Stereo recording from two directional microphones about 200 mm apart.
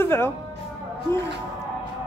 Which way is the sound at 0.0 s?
10° left (ahead or behind).